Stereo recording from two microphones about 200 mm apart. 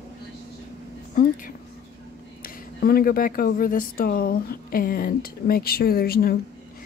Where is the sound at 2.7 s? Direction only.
50° left (ahead or behind).